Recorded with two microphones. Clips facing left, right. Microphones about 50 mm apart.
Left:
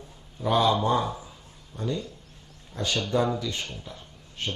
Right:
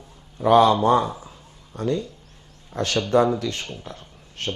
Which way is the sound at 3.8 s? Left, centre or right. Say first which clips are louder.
Right 4 dB; right.